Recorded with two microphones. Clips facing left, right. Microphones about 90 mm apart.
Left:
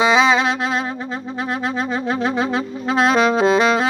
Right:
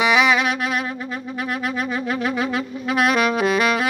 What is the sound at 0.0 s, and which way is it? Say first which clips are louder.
Music: left 2 dB; 25° left (ahead or behind).